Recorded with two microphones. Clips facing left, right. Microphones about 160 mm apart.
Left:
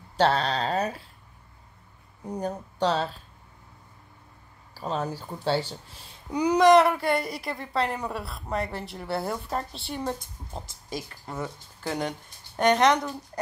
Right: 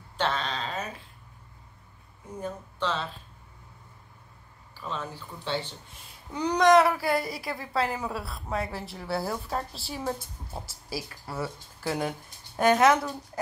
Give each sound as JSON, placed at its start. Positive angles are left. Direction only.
{"t": 0.2, "sound": "speech", "side_deg": 35}
{"t": 2.2, "sound": "speech", "side_deg": 40}
{"t": 4.7, "sound": "speech", "side_deg": 40}
{"t": 6.3, "sound": "a woman's voice", "side_deg": 5}